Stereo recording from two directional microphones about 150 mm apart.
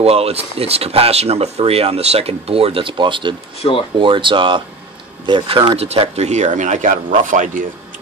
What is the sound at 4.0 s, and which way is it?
Speech, 35° right (ahead or behind).